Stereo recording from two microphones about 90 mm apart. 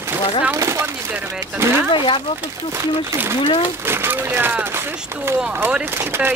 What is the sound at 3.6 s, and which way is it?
Speech, 25° right (ahead or behind).